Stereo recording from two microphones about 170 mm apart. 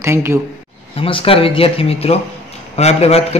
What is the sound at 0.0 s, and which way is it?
Speech, 15° right (ahead or behind).